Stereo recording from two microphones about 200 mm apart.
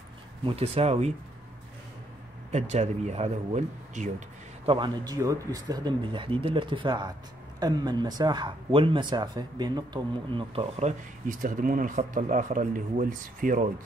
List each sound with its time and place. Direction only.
0.5 s speech: 30° right (ahead or behind)
2.5 s speech: 35° right (ahead or behind)
4.6 s speech: 25° right (ahead or behind); by 13.7 s 40° right (ahead or behind)